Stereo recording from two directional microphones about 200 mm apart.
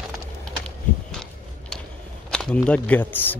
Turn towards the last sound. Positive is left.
turn(degrees=10)  # may be behind; listen again after turning